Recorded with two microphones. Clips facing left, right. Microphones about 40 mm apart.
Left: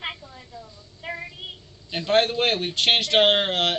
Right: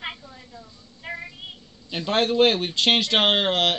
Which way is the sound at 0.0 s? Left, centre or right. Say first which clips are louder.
Left 1 dB; centre.